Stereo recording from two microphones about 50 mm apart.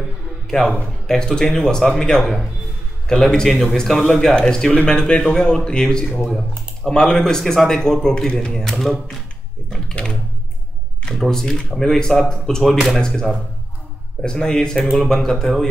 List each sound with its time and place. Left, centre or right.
0.5 s a man's voice: centre
8.7 s speech: centre
9.7 s speech: centre
11.2 s speech: centre